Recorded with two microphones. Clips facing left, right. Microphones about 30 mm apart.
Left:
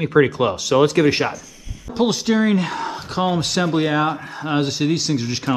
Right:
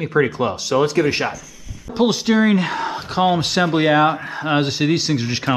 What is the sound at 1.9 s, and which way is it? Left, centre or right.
Speech, centre.